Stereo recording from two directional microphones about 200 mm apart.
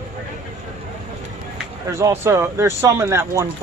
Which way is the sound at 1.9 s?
15° right (ahead or behind).